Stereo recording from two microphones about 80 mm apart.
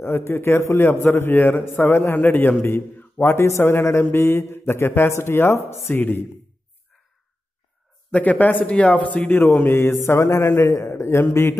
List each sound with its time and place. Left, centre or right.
0.0 s a man's voice: left
2.6 s mantra: left
8.1 s a man's voice: centre
10.0 s mantra: left